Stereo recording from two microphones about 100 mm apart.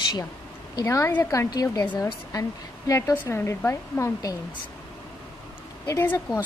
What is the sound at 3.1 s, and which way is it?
Speech, 25° left (ahead or behind).